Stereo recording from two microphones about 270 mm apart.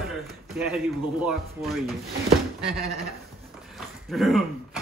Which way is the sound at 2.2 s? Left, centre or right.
Right.